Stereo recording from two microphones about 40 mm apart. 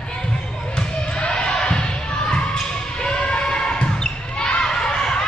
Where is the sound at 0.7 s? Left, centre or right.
Left.